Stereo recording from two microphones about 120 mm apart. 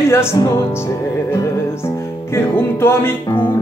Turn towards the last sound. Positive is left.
turn(degrees=20)  # may be behind; listen again after turning